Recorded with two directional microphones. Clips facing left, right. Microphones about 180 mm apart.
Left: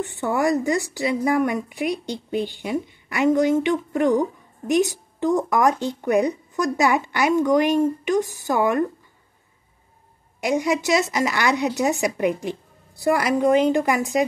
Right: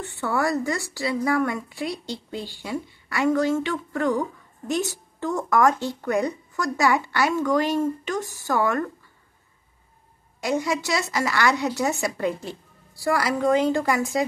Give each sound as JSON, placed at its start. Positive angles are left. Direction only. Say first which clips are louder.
{"t": 0.0, "sound": "a woman's voice", "louder": "left 3 dB", "side_deg": 15}
{"t": 10.4, "sound": "a woman's voice", "louder": "left 3 dB", "side_deg": 15}